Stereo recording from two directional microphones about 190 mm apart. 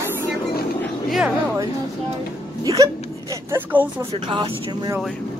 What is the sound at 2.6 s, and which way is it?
Speech, 20° right (ahead or behind).